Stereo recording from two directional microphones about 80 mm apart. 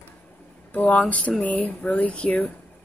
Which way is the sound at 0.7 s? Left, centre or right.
Centre.